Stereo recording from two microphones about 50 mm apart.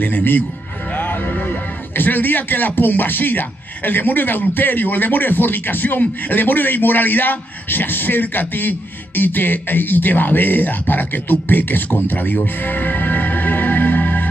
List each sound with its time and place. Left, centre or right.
0.0 s speech: left